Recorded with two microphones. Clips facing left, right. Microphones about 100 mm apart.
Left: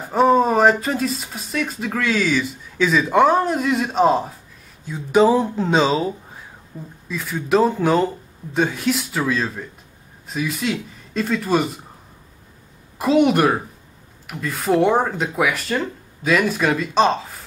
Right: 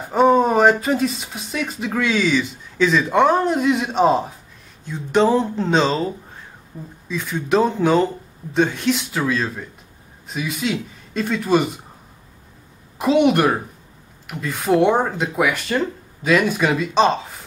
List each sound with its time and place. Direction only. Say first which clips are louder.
0.0 s speech: right 1 dB; centre (ahead or behind)
6.7 s speech: even; 10° right (ahead or behind)
7.1 s speech: even; centre (ahead or behind)
12.9 s speech: even; centre (ahead or behind)